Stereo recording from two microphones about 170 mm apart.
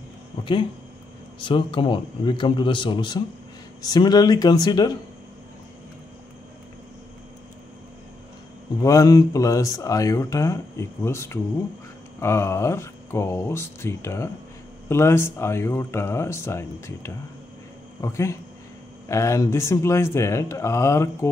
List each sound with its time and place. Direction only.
1.4 s speech: 30° left (ahead or behind)
8.8 s speech: 20° left (ahead or behind)